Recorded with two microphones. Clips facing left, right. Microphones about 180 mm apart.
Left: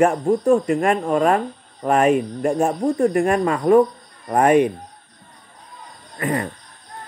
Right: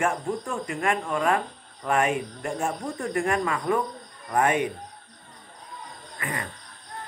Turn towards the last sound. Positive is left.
turn(degrees=40)  # may be behind; listen again after turning